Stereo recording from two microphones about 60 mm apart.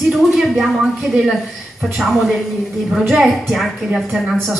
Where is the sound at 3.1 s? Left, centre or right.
Centre.